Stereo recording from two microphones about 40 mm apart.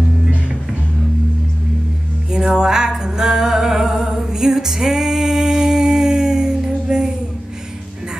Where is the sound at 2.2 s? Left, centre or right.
Centre.